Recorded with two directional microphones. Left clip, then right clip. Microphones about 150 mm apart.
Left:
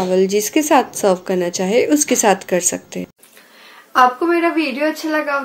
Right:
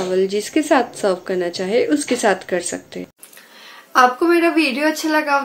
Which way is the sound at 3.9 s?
5° right (ahead or behind).